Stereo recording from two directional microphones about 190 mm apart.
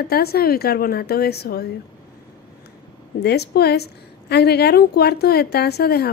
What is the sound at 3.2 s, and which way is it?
A woman's voice, 60° left (ahead or behind).